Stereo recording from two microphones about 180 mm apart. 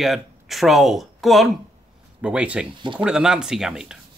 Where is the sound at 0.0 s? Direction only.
Centre (ahead or behind).